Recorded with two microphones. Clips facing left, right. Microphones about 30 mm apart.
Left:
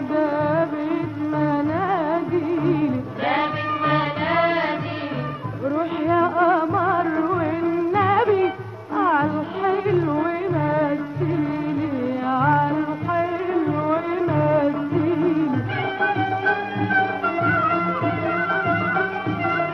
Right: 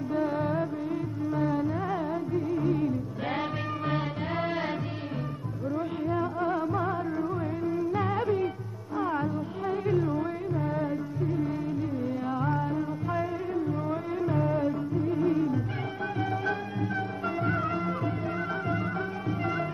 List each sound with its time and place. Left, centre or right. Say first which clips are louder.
0.1 s music: left 8 dB; left
5.8 s music: left 10 dB; left
6.7 s music: left 9 dB; left
7.0 s music: left 10 dB; left